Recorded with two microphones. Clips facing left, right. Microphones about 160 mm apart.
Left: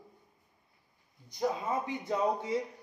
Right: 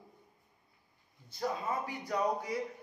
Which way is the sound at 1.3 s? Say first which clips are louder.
Left 3 dB; 20° left (ahead or behind).